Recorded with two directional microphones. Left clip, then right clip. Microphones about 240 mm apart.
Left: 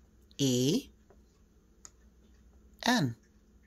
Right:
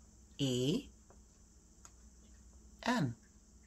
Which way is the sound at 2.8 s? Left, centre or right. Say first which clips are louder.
Left 7 dB; left.